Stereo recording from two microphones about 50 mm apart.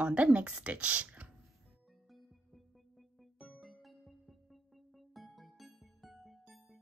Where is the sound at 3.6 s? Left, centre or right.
Centre.